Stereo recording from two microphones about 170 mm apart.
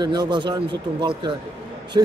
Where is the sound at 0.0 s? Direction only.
25° right (ahead or behind).